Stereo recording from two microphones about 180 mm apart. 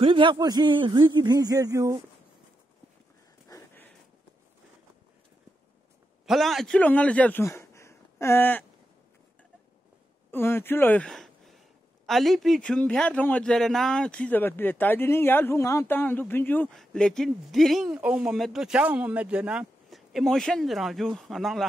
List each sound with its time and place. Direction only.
0.0 s speech: 30° right (ahead or behind)
3.4 s a sound: 15° left (ahead or behind)
6.2 s speech: centre (ahead or behind)
10.3 s a man's voice: 10° left (ahead or behind)